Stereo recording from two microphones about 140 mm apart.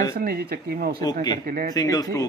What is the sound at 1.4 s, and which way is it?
Speech, 80° right.